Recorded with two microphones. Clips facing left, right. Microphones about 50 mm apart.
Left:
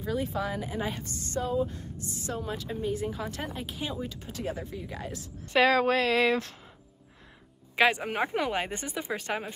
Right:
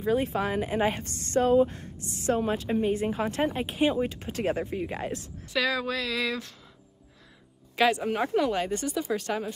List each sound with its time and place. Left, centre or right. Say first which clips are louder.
0.0 s a woman's voice: right 5 dB; right
5.5 s a woman's voice: left 5 dB; left
7.7 s speech: right 1 dB; centre